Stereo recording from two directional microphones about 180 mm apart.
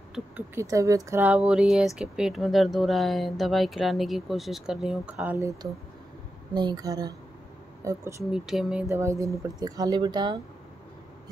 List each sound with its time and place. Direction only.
0.6 s speech: 15° right (ahead or behind)
6.5 s speech: 25° right (ahead or behind)
8.3 s speech: 5° right (ahead or behind)
8.8 s speech: 15° right (ahead or behind)